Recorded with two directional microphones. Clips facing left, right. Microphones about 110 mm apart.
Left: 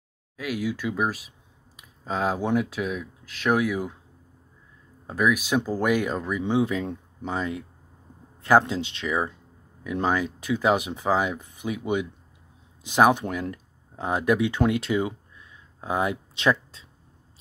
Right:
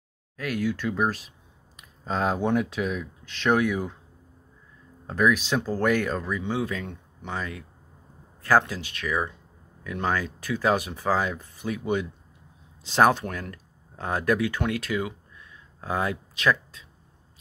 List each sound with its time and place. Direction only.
0.4 s speech: 10° left (ahead or behind)
5.0 s speech: 10° left (ahead or behind); by 16.8 s 25° left (ahead or behind)